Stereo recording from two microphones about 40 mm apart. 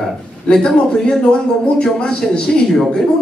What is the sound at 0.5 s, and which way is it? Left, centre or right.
A man's voice, centre.